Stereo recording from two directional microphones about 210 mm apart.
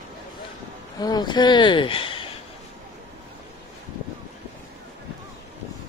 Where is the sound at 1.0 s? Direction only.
20° left (ahead or behind).